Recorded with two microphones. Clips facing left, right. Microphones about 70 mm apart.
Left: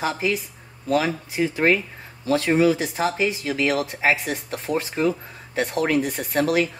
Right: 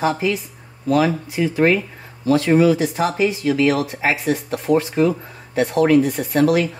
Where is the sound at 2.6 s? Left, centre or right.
Left.